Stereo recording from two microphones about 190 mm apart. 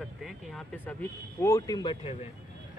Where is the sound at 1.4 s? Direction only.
20° left (ahead or behind).